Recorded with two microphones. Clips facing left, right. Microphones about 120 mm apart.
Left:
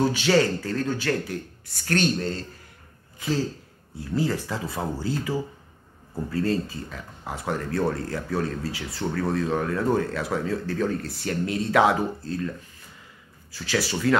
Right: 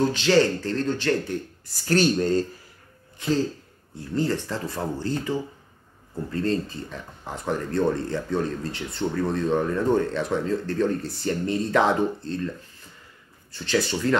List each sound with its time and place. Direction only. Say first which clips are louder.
0.0 s speech: right 1 dB; 10° left (ahead or behind)
1.9 s speech: right 3 dB; 40° right (ahead or behind)
3.2 s speech: right 2 dB; 5° left (ahead or behind)
13.5 s speech: right 2 dB; 5° left (ahead or behind)